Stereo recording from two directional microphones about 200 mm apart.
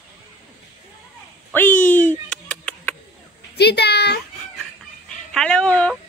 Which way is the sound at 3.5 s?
55° left (ahead or behind).